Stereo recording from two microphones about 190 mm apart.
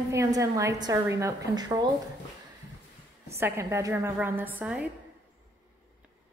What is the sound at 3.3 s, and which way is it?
A woman's voice, 15° right (ahead or behind).